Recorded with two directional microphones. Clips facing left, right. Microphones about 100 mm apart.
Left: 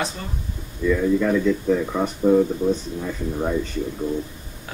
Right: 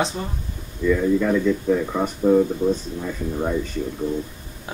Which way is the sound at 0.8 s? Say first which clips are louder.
Even; 5° right (ahead or behind).